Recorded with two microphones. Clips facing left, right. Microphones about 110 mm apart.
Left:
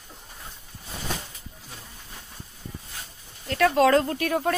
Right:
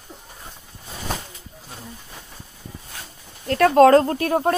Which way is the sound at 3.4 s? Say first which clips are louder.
Right 7 dB; 45° right (ahead or behind).